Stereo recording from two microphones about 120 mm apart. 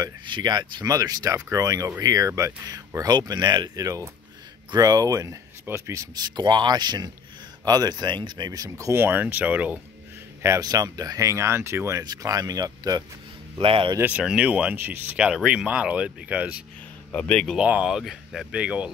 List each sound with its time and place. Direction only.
0.0 s speech: 40° right (ahead or behind); by 9.8 s 15° right (ahead or behind)
10.4 s speech: 25° right (ahead or behind)
13.6 s speech: 45° right (ahead or behind)
13.9 s speech: 10° right (ahead or behind)
17.1 s speech: 10° left (ahead or behind)
17.6 s speech: 10° right (ahead or behind)